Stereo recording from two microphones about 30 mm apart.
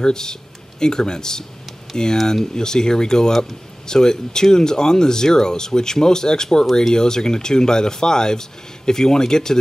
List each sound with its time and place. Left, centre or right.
0.0 s speech: left